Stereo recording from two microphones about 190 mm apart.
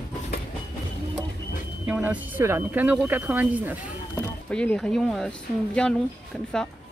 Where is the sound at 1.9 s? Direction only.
10° right (ahead or behind).